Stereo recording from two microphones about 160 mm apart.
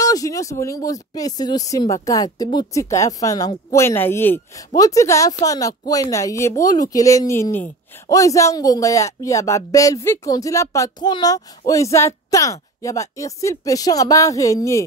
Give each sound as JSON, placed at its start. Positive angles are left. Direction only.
{"t": 0.0, "sound": "speech", "side_deg": 20}